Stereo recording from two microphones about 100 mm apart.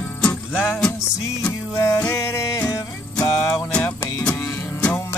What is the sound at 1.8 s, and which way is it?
Music, 35° left (ahead or behind).